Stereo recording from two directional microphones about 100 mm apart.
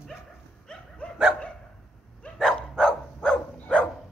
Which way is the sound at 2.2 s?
5° left (ahead or behind).